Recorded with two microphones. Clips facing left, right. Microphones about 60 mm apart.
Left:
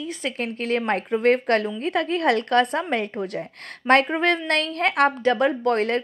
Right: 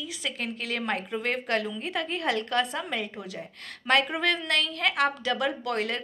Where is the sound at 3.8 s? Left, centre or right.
Left.